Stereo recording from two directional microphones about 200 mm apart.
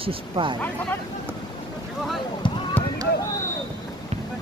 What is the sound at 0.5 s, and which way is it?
Speech, 10° left (ahead or behind).